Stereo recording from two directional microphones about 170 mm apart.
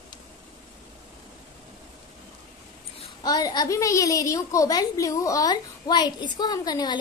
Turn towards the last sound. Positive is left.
turn(degrees=25)  # may be behind; listen again after turning